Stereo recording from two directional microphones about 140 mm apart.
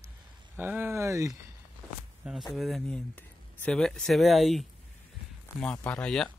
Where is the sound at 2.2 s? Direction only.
Centre (ahead or behind).